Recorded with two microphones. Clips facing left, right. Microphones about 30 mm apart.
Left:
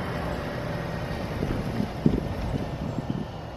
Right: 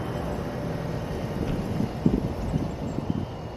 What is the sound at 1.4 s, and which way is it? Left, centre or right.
Vehicle, left.